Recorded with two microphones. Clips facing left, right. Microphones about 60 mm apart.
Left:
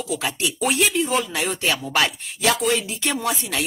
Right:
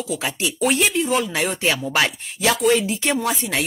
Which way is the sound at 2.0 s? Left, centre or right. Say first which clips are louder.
Right 1 dB; right.